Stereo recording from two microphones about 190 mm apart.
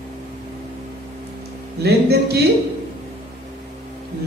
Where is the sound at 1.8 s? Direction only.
60° right (ahead or behind).